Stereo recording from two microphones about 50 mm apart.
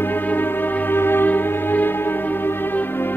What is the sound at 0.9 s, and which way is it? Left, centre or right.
Music, left.